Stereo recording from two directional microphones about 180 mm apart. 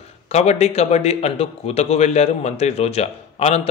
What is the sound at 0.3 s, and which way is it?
A man's voice, 35° left (ahead or behind).